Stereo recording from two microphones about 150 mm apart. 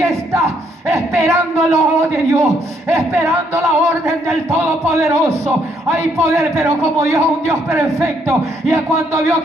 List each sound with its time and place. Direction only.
0.0 s a man's voice: 20° right (ahead or behind)